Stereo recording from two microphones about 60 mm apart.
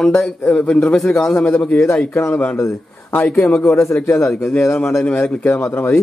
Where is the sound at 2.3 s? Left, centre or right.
Left.